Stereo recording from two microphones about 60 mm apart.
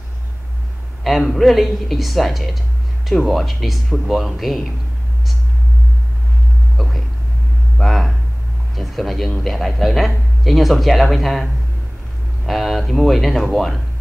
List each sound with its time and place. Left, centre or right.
1.0 s a man's voice: centre
6.8 s vehicle: centre
7.7 s a sound: centre
8.7 s a man's voice: centre
12.4 s a man's voice: centre